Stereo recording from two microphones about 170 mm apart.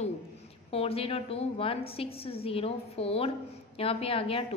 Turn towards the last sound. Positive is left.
turn(degrees=35)  # may be behind; listen again after turning